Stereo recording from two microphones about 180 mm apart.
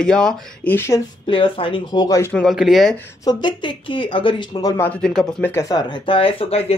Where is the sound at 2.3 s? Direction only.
Centre (ahead or behind).